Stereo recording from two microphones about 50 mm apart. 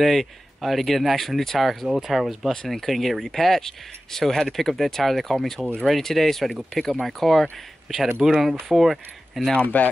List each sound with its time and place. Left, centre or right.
0.0 s speech: centre
1.9 s speech: centre
2.5 s speech: centre
9.6 s speech: left